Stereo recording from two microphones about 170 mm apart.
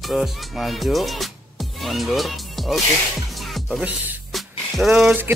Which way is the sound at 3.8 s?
10° right (ahead or behind).